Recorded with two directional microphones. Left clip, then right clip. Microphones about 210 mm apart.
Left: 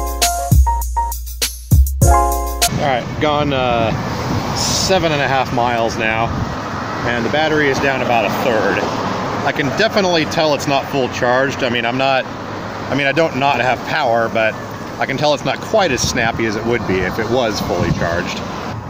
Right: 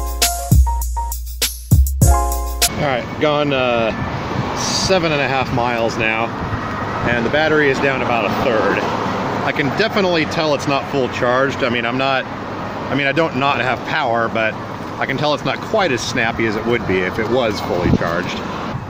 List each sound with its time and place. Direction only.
1.4 s music: centre (ahead or behind)
2.8 s speech: 15° left (ahead or behind)